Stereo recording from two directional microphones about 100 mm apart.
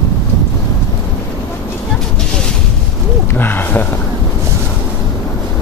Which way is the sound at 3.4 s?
20° left (ahead or behind).